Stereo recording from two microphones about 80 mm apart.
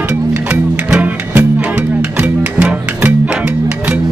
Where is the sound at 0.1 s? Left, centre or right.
Centre.